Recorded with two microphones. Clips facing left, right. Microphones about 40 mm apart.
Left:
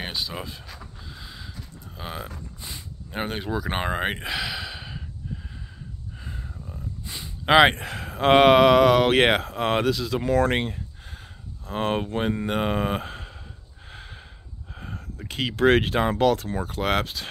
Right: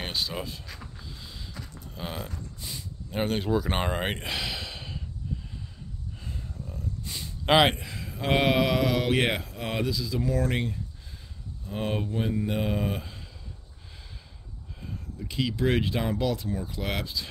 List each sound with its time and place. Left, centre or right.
0.0 s a sound: centre
2.0 s speech: centre
6.2 s a sound: centre
7.7 s speech: left
11.7 s speech: left
15.5 s speech: left